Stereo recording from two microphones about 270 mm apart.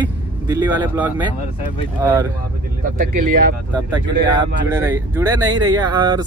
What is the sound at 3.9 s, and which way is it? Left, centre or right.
Speech, centre.